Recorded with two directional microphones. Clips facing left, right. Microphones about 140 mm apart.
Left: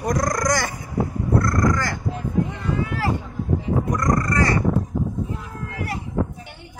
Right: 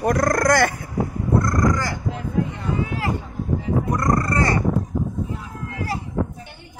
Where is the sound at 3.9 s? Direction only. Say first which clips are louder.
Right 1 dB; 35° right (ahead or behind).